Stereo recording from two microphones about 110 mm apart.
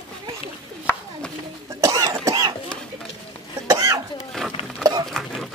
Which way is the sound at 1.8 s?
30° right (ahead or behind).